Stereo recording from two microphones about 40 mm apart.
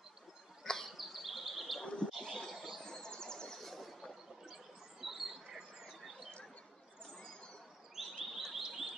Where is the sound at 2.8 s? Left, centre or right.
Centre.